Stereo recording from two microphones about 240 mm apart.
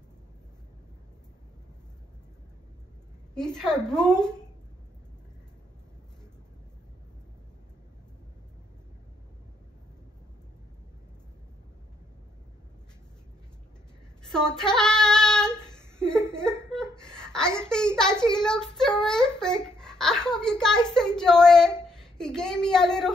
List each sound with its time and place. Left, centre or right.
3.3 s a child's voice: centre
14.3 s child singing: centre
16.3 s a sound: centre
18.2 s a child's voice: centre